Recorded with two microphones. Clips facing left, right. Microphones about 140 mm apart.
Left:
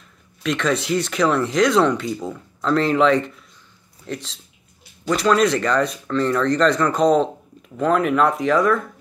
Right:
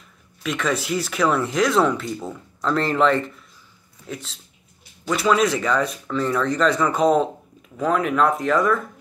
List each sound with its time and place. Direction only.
0.4 s speech: 5° right (ahead or behind)